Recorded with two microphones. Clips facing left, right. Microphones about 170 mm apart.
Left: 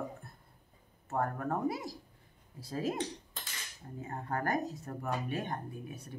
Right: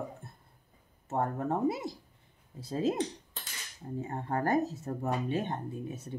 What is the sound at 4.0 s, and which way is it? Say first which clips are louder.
Speech: right 4 dB; 25° right (ahead or behind).